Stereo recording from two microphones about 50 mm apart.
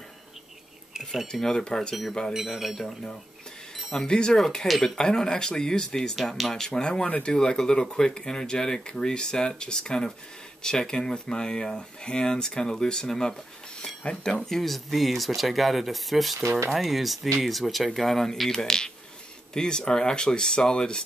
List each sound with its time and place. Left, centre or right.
1.2 s speech: centre
2.3 s speech: centre
3.9 s speech: centre
4.6 s speech: centre
4.9 s speech: centre
6.1 s speech: centre
6.5 s speech: centre
7.1 s speech: left
7.3 s speech: centre
16.4 s speech: right
16.7 s speech: centre